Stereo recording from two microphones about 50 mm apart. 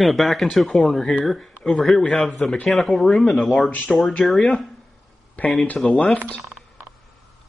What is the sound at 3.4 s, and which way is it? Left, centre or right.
Speech, centre.